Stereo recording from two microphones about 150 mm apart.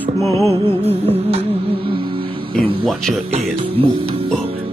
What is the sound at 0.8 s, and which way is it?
Music, 40° right (ahead or behind).